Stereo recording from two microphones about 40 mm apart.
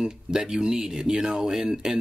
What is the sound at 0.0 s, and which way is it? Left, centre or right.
Speech, centre.